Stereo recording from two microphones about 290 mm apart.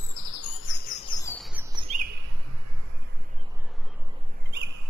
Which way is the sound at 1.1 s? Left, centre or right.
Centre.